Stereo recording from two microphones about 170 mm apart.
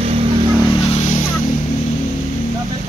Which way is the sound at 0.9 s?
45° left (ahead or behind).